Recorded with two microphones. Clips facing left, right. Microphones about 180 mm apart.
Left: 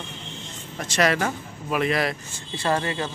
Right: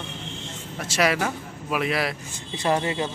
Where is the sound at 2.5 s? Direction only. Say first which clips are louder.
Right 1 dB; 15° right (ahead or behind).